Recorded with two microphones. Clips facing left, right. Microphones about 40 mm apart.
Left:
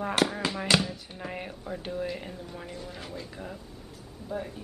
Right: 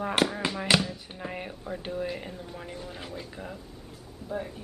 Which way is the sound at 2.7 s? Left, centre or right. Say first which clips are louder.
Right 1 dB; centre.